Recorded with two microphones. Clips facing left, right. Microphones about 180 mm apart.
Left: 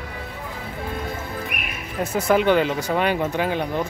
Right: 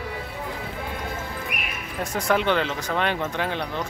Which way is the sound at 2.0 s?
5° left (ahead or behind).